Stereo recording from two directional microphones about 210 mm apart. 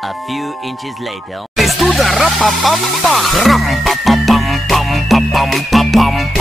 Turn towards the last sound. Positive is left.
turn(degrees=0)  # may be behind; listen again after turning